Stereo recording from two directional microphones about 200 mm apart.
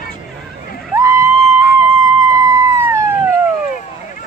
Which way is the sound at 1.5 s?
15° right (ahead or behind).